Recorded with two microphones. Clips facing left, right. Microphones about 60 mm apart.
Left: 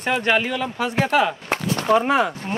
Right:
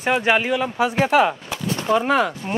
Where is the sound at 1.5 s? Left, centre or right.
Left.